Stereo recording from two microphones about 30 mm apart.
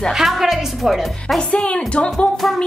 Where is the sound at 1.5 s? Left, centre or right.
Left.